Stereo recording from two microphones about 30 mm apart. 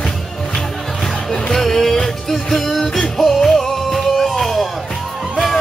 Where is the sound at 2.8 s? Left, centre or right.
Left.